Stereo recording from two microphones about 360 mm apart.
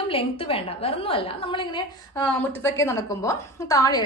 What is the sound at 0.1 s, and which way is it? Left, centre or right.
A woman's voice, centre.